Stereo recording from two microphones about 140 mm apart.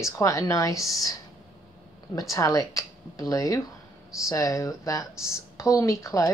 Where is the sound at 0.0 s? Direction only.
20° left (ahead or behind).